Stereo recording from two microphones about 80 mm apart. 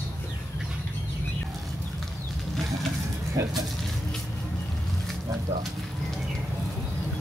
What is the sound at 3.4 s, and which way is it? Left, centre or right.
Speech, right.